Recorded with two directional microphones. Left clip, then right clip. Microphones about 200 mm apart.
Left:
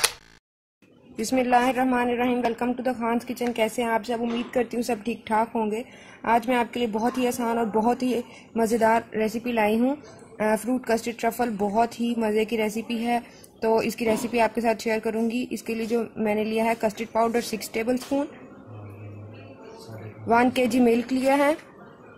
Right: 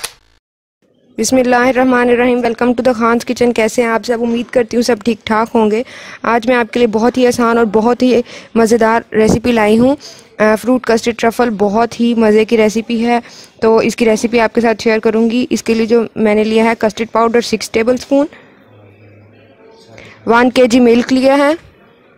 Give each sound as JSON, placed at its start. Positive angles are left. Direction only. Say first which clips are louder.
{"t": 1.1, "sound": "speech", "louder": "right 10 dB", "side_deg": -50}
{"t": 20.2, "sound": "speech", "louder": "right 12 dB", "side_deg": -45}